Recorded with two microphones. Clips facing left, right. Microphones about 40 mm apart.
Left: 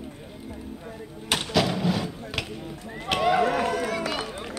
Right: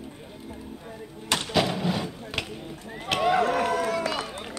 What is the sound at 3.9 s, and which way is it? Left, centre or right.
Run, left.